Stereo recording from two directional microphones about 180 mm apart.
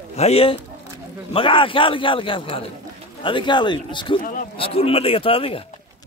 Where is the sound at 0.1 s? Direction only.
35° left (ahead or behind).